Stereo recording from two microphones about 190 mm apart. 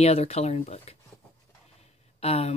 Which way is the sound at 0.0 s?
35° left (ahead or behind).